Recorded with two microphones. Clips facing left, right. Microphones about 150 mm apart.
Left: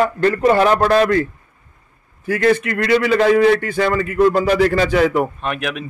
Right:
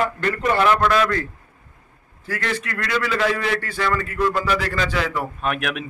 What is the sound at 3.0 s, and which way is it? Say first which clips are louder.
Speech: left 10 dB; 40° left (ahead or behind).